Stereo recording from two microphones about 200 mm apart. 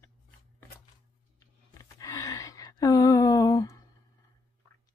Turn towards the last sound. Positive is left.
turn(degrees=15)  # may be behind; listen again after turning